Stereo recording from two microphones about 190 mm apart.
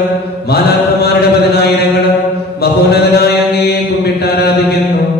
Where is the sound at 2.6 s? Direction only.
55° left (ahead or behind).